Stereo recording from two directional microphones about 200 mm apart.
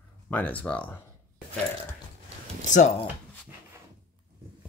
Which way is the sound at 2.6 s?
35° left (ahead or behind).